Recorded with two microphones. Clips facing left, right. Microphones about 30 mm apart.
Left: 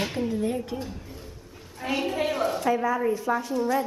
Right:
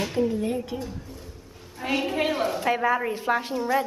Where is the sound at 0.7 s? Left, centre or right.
Centre.